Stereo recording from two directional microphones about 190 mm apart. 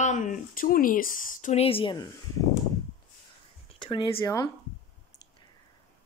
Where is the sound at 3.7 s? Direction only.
25° left (ahead or behind).